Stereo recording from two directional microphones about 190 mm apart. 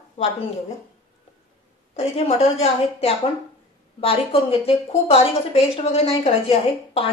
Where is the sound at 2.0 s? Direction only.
30° left (ahead or behind).